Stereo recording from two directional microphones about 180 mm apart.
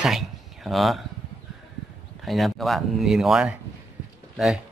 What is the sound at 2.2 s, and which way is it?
Speech, centre (ahead or behind).